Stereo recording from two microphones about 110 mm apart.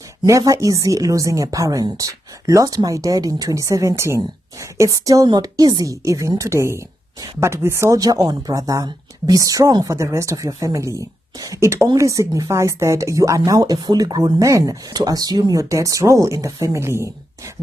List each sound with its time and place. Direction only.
0.2 s speech: 35° right (ahead or behind)